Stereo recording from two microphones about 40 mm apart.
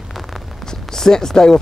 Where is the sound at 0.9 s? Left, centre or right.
Centre.